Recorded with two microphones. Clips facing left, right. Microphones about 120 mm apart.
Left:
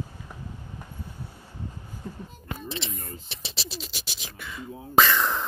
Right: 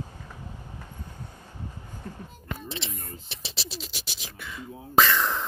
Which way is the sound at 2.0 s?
15° left (ahead or behind).